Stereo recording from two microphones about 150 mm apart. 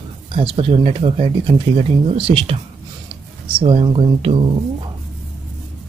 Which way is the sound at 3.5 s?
35° right (ahead or behind).